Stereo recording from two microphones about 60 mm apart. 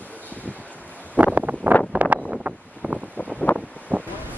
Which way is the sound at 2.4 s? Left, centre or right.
Right.